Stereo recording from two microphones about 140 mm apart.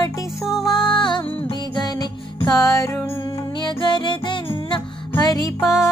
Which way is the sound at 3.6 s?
35° left (ahead or behind).